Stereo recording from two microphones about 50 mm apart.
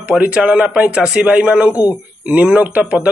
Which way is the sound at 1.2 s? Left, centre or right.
Right.